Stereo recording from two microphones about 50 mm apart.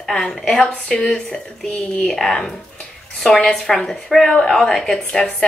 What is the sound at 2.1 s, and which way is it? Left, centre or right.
A woman's voice, centre.